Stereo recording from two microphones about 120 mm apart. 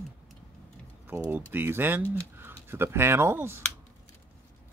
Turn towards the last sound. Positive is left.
turn(degrees=-20)  # may be behind; listen again after turning